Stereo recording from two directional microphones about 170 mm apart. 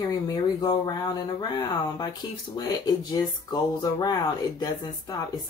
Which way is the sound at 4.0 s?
25° left (ahead or behind).